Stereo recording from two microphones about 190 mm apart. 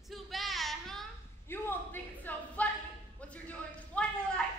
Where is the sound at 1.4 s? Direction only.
10° left (ahead or behind).